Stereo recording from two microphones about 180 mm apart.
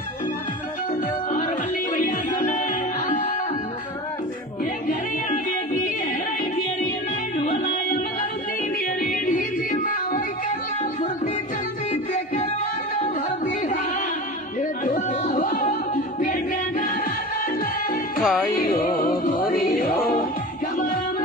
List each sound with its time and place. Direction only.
2.0 s music: 50° left (ahead or behind)
4.8 s music: 45° left (ahead or behind)
7.3 s music: 50° left (ahead or behind)
9.0 s music: 50° left (ahead or behind)
14.6 s music: 45° left (ahead or behind)
18.2 s music: centre (ahead or behind)
18.5 s music: 50° left (ahead or behind)